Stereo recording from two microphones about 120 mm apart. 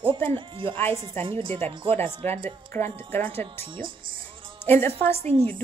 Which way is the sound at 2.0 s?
20° left (ahead or behind).